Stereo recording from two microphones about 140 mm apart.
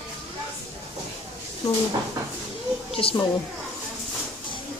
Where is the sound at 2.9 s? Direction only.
40° left (ahead or behind).